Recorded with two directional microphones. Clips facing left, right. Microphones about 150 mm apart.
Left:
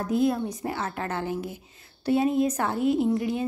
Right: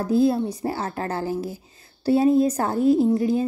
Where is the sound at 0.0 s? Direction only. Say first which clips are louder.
Right 4 dB; 30° right (ahead or behind).